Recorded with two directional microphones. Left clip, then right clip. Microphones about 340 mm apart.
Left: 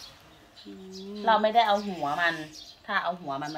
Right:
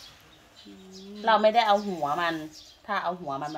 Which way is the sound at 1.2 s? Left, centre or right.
Right.